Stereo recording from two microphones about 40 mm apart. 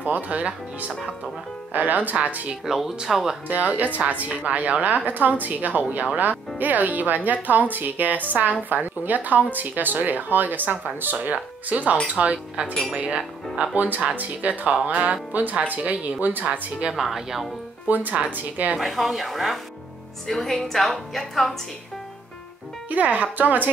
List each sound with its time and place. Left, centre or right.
0.0 s speech: right
1.7 s speech: right
2.6 s speech: centre
3.4 s speech: right
11.1 s speech: right
13.7 s speech: right
16.9 s speech: centre
17.8 s speech: right
18.8 s a woman's voice: centre
22.8 s speech: right